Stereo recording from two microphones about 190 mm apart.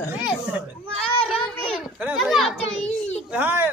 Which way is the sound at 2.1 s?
Centre (ahead or behind).